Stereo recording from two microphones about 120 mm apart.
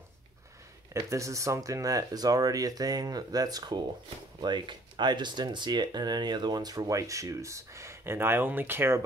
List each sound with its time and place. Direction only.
0.9 s speech: 25° right (ahead or behind)